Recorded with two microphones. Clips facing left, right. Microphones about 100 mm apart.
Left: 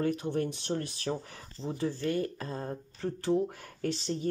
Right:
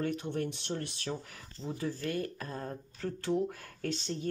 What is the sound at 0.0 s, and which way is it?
Speech, 35° left (ahead or behind).